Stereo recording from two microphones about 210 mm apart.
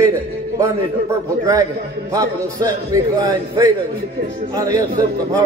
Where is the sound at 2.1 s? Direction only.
15° right (ahead or behind).